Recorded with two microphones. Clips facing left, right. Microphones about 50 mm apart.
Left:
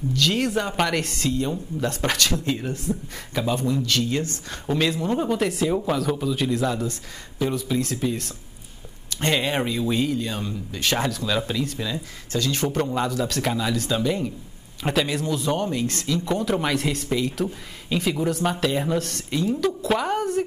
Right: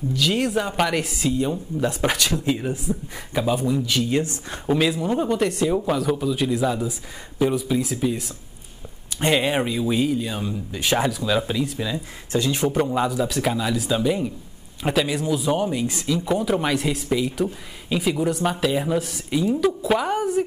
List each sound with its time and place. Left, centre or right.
0.1 s speech: centre
4.7 s speech: centre
12.3 s speech: centre
12.6 s speech: centre